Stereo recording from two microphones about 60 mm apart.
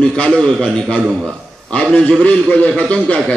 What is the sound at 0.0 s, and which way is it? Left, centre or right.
A man's voice, centre.